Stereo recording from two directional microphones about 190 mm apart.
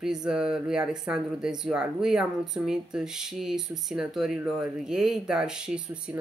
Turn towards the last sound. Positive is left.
turn(degrees=-5)  # may be behind; listen again after turning